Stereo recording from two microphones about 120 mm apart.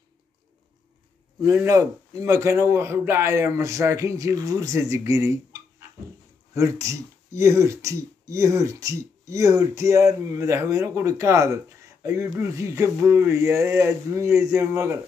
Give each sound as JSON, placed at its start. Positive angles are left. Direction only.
{"t": 1.4, "sound": "speech", "side_deg": -25}